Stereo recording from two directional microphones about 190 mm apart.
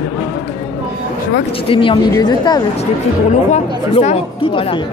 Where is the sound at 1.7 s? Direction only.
25° left (ahead or behind).